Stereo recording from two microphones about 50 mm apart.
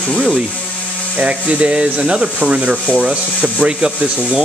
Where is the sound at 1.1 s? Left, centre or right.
Right.